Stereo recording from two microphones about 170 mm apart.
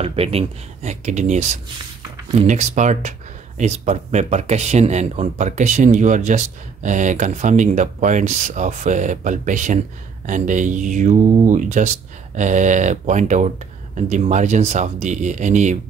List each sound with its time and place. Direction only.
0.0 s speech: 35° right (ahead or behind)